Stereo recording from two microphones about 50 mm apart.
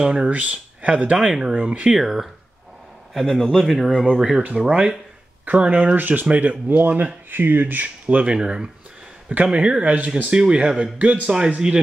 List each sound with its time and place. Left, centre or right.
0.1 s speech: right
2.0 s speech: centre
4.4 s speech: right
4.6 s speech: centre
5.4 s speech: right
8.3 s speech: centre